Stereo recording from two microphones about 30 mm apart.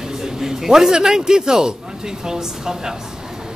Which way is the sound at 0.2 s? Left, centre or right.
Centre.